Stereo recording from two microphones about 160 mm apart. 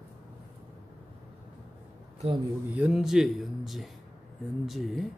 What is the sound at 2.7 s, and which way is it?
Speech, 5° right (ahead or behind).